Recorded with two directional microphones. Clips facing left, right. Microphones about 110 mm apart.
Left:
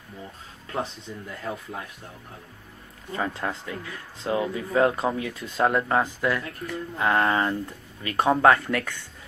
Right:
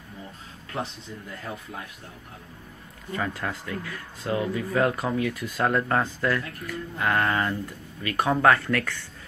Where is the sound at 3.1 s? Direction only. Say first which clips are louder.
Left 1 dB; 25° left (ahead or behind).